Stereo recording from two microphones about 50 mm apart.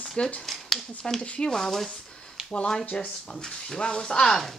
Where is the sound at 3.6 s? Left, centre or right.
Centre.